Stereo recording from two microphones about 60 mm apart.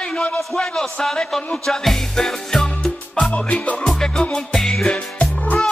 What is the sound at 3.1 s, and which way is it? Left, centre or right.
Music, centre.